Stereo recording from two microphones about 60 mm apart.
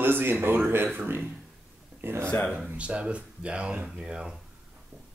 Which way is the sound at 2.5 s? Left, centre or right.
Right.